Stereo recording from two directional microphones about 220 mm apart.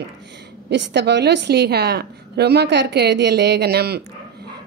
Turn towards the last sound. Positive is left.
turn(degrees=-45)  # may be behind; listen again after turning